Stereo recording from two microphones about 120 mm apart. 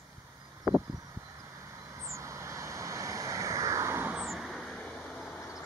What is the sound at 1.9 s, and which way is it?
Vehicle, 25° right (ahead or behind).